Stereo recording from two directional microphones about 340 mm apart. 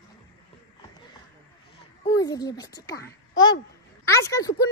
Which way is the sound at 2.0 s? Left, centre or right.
Centre.